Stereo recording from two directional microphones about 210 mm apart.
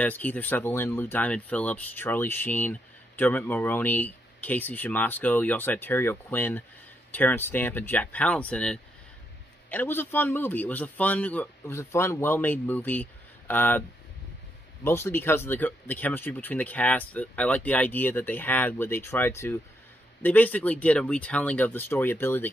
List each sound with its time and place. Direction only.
0.0 s speech: 10° left (ahead or behind)